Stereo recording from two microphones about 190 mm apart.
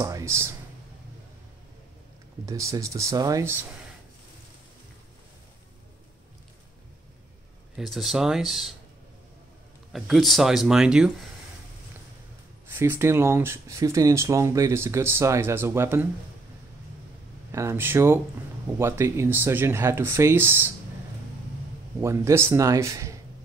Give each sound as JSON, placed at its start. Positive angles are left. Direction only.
{"t": 0.0, "sound": "speech", "side_deg": -15}
{"t": 2.4, "sound": "speech", "side_deg": -15}
{"t": 7.7, "sound": "speech", "side_deg": 0}
{"t": 9.9, "sound": "speech", "side_deg": 0}
{"t": 12.6, "sound": "speech", "side_deg": -10}
{"t": 17.5, "sound": "speech", "side_deg": -15}
{"t": 22.0, "sound": "speech", "side_deg": -15}